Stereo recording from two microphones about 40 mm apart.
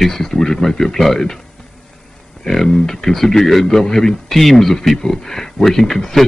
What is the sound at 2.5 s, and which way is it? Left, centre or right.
A man's voice, centre.